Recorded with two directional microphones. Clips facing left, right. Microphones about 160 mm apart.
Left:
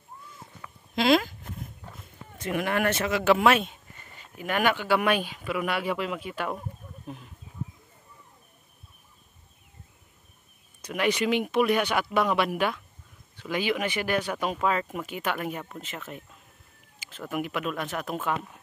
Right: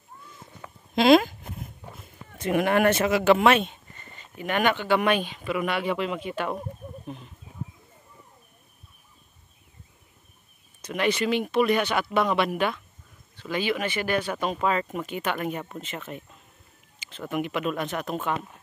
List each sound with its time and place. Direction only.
0.6 s a sound: 20° right (ahead or behind)
2.3 s speech: 20° right (ahead or behind)
3.3 s speech: centre (ahead or behind)
10.8 s speech: 10° left (ahead or behind)